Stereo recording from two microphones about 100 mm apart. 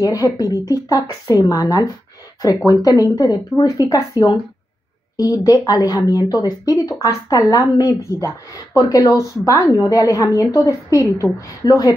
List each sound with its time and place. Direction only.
0.1 s a woman's voice: 40° left (ahead or behind)